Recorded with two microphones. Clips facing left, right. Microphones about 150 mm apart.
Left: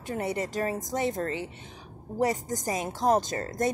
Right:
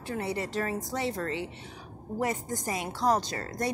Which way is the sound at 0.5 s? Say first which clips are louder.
Left 2 dB; 40° left (ahead or behind).